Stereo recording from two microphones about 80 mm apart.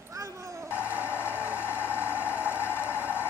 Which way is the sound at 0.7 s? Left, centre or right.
Left.